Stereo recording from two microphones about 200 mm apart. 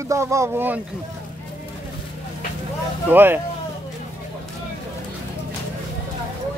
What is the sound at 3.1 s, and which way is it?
Speech, 10° right (ahead or behind).